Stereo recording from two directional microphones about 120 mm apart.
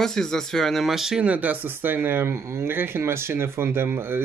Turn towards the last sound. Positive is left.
turn(degrees=-20)  # may be behind; listen again after turning